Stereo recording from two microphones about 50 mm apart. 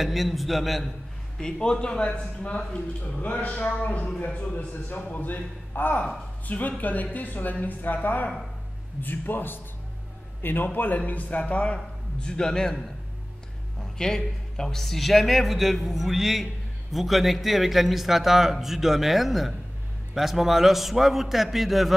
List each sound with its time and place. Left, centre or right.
0.0 s speech: centre
1.4 s a man's voice: centre